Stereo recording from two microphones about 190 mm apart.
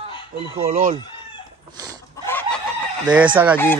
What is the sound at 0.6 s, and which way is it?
Speech, 50° right (ahead or behind).